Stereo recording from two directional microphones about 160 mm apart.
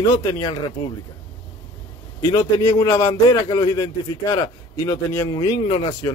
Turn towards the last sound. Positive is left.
turn(degrees=35)  # may be behind; listen again after turning